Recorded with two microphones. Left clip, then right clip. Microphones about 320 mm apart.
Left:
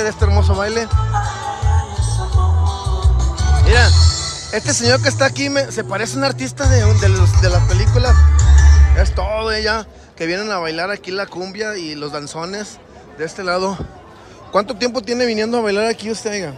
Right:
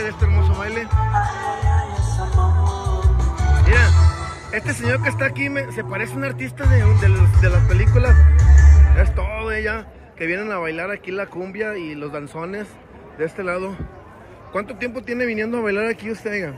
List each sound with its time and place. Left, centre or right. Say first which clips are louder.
0.0 s speech: left 6 dB; centre
1.1 s music: right 1 dB; right
2.0 s music: left 2 dB; right
2.3 s music: left 1 dB; right
4.6 s a man's voice: left 7 dB; centre